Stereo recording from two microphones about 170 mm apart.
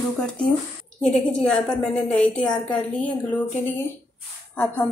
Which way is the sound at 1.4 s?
5° left (ahead or behind).